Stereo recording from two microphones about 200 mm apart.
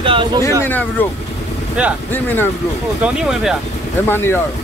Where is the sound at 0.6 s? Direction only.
10° left (ahead or behind).